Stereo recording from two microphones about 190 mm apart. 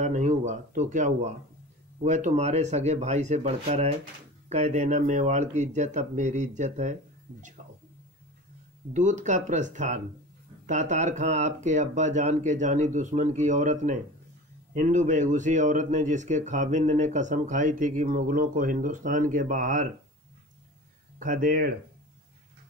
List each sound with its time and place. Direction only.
0.0 s speech: 40° right (ahead or behind)
8.9 s speech: 40° right (ahead or behind)
21.2 s speech: 45° right (ahead or behind)